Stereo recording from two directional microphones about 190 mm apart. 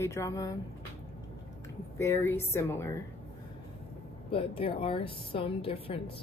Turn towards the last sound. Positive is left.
turn(degrees=30)  # may be behind; listen again after turning